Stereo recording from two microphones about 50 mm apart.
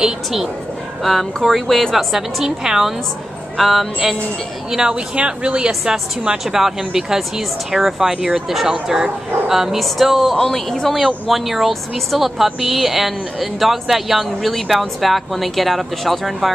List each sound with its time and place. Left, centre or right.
1.0 s speech: centre
2.1 s a woman's voice: centre
10.3 s speech: centre